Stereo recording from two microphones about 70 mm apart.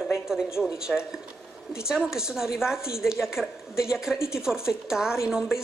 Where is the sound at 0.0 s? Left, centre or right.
Centre.